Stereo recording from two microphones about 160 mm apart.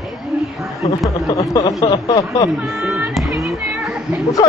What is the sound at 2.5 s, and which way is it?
Speech, centre (ahead or behind).